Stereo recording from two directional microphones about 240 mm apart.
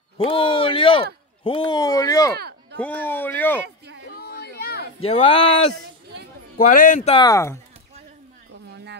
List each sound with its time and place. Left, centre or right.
0.2 s speech: left
2.3 s a sound: right
2.8 s speech: centre
3.6 s a sound: right
4.2 s chatter: left
5.0 s speech: left
6.6 s a man's voice: left
7.2 s speech: centre